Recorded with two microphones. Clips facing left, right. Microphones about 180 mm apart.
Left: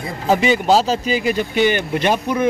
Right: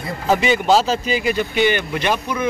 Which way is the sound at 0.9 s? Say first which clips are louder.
Left 1 dB; 40° left (ahead or behind).